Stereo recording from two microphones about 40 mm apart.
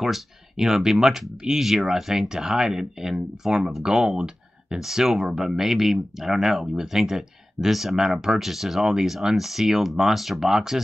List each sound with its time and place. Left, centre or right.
0.0 s speech: centre
1.3 s speech: right
1.6 s speech: centre